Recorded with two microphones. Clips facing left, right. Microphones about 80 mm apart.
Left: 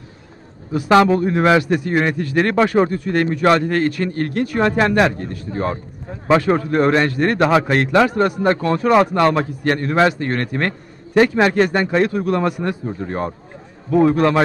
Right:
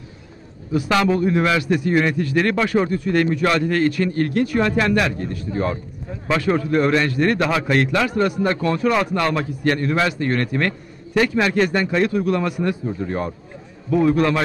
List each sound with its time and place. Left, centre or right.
0.8 s a man's voice: left